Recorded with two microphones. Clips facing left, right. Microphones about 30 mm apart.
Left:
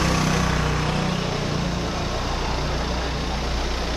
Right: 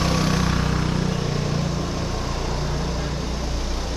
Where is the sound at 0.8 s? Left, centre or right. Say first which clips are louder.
Even; left.